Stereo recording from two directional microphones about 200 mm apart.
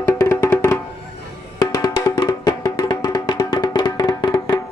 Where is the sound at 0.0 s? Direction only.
15° left (ahead or behind).